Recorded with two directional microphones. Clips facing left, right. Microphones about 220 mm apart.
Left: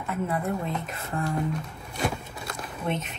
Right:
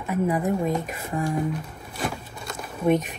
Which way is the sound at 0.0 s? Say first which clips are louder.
Right 5 dB; 15° right (ahead or behind).